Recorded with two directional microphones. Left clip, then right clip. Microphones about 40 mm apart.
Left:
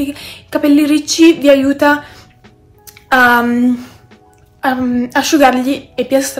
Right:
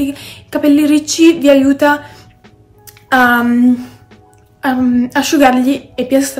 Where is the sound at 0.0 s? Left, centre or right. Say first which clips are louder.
Right 1 dB; right.